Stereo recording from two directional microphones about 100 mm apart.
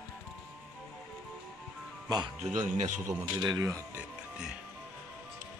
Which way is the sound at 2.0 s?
45° right (ahead or behind).